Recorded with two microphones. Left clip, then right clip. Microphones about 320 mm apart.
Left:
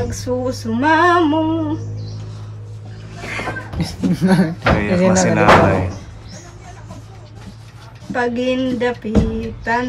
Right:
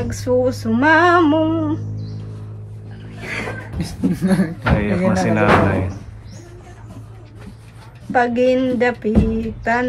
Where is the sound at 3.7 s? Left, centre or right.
Centre.